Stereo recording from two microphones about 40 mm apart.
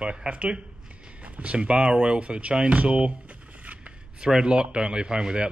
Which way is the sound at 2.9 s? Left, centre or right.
Right.